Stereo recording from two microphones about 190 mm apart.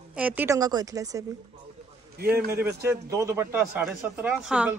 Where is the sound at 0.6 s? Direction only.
20° right (ahead or behind).